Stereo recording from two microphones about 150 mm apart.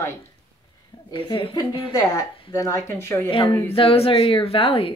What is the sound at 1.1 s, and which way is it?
A woman's voice, 35° left (ahead or behind).